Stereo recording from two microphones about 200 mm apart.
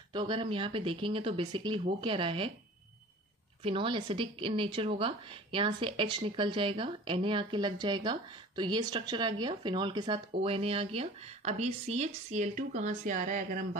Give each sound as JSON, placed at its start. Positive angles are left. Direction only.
{"t": 0.1, "sound": "a woman's voice", "side_deg": -25}
{"t": 3.6, "sound": "a woman's voice", "side_deg": -25}